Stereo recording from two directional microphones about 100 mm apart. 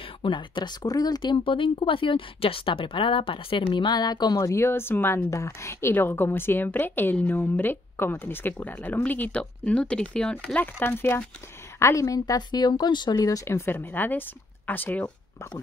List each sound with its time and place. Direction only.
0.2 s speech: 55° left (ahead or behind)
0.8 s a woman's voice: 40° left (ahead or behind); by 11.2 s 20° left (ahead or behind)
11.8 s a woman's voice: 30° left (ahead or behind)